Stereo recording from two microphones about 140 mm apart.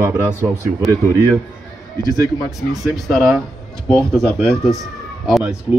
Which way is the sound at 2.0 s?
25° left (ahead or behind).